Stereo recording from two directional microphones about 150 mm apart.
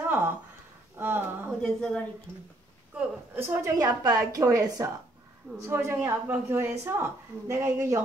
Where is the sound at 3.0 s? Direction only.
15° right (ahead or behind).